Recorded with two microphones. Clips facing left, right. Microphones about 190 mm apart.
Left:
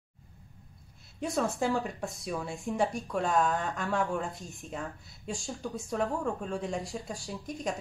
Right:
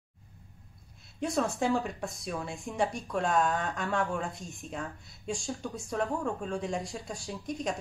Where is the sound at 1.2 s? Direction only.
Centre (ahead or behind).